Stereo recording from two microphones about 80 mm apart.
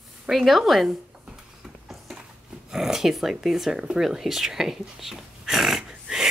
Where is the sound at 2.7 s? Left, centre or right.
Centre.